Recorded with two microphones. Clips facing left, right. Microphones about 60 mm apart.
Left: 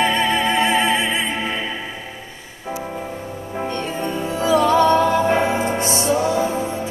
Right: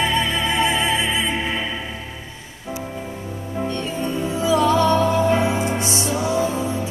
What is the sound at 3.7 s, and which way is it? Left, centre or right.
Music, left.